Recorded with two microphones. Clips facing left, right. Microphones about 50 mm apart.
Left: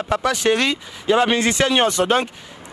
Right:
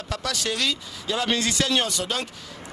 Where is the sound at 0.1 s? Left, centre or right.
Left.